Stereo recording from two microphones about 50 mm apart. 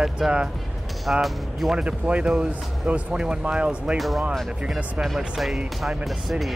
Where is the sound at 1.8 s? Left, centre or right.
Right.